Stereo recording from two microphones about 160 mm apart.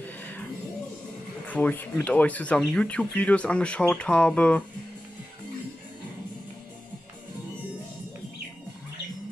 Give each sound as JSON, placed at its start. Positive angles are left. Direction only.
{"t": 0.0, "sound": "music", "side_deg": 10}
{"t": 1.5, "sound": "speech", "side_deg": 10}